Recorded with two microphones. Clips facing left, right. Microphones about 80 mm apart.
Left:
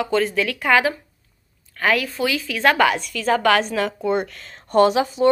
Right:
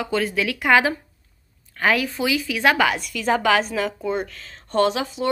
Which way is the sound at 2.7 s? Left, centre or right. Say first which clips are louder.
Left 3 dB; centre.